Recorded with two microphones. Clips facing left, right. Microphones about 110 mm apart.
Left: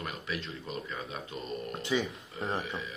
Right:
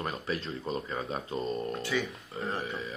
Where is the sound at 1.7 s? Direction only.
20° left (ahead or behind).